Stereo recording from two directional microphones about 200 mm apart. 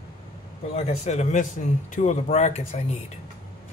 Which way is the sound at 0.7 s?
35° left (ahead or behind).